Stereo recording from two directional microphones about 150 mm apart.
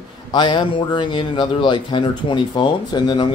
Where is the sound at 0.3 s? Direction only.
30° left (ahead or behind).